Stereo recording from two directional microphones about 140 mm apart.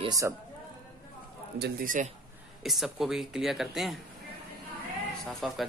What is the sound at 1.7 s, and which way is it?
Speech, 75° right (ahead or behind).